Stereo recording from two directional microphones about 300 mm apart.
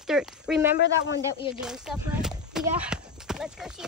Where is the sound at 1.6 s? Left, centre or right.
Centre.